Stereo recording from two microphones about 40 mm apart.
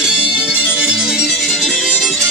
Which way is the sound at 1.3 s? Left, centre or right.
Centre.